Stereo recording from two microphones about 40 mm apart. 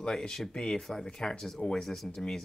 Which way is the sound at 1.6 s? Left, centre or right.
Left.